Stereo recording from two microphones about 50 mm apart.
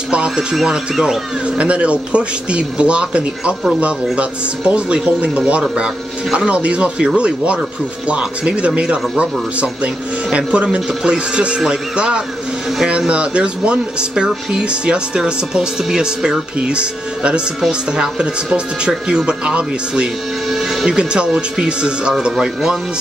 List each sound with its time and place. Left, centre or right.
0.1 s speech: centre
20.4 s music: centre
20.9 s speech: centre